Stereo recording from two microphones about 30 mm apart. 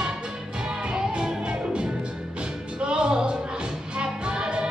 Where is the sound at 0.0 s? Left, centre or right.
Right.